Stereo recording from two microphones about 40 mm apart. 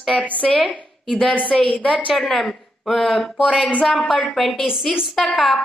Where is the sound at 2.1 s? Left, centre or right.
Centre.